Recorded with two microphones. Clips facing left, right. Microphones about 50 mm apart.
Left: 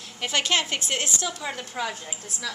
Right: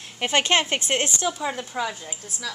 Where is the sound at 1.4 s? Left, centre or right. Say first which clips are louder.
Right 4 dB; centre.